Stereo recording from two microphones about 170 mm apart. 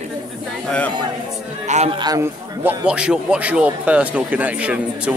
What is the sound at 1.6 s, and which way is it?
Speech, 40° right (ahead or behind).